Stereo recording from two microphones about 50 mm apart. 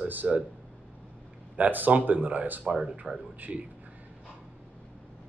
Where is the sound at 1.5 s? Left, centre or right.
Right.